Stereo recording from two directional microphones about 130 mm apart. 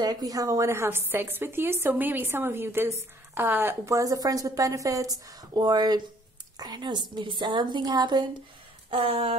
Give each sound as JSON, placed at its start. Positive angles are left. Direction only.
{"t": 0.0, "sound": "a woman's voice", "side_deg": -30}
{"t": 8.9, "sound": "speech", "side_deg": -45}